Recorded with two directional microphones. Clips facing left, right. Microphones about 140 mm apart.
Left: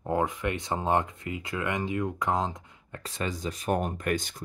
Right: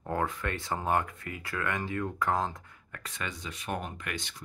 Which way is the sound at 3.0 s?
35° left (ahead or behind).